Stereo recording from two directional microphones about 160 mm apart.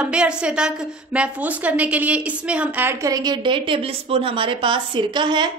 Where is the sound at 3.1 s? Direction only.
25° right (ahead or behind).